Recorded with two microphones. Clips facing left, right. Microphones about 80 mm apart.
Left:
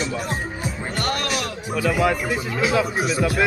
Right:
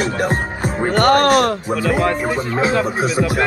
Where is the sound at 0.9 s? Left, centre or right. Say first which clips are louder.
Right 14 dB; right.